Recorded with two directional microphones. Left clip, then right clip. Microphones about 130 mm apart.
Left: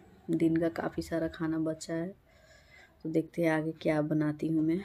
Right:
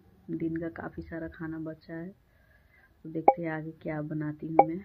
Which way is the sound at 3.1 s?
35° left (ahead or behind).